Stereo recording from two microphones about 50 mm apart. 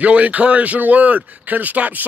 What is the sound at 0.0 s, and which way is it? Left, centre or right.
A man's voice, right.